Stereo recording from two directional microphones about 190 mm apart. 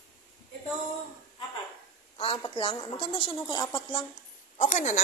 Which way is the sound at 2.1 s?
30° left (ahead or behind).